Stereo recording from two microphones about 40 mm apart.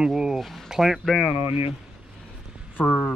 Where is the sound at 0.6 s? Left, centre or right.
Centre.